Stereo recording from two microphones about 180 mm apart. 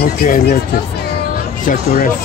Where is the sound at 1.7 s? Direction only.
45° left (ahead or behind).